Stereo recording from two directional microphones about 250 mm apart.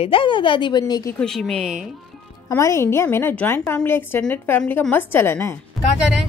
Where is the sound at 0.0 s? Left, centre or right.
Left.